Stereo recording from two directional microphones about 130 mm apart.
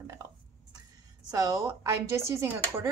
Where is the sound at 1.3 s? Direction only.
30° right (ahead or behind).